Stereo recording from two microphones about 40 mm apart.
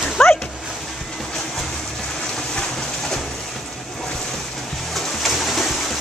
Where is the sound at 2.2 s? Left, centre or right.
Centre.